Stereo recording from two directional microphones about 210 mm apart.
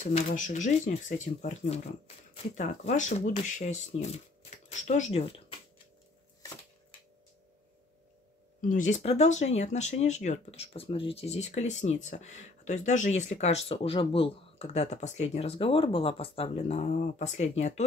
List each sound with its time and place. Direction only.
0.0 s speech: 35° left (ahead or behind)
8.5 s speech: 40° left (ahead or behind)